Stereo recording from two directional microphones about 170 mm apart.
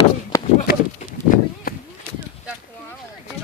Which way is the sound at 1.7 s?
60° left (ahead or behind).